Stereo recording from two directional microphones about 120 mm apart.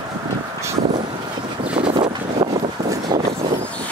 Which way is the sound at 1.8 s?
50° right (ahead or behind).